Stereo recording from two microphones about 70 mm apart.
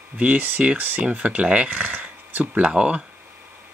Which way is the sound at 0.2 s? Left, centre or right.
Right.